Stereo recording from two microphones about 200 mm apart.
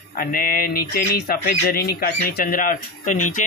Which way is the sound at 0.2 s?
45° left (ahead or behind).